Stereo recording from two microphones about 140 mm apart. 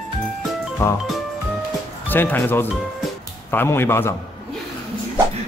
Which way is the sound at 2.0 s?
15° left (ahead or behind).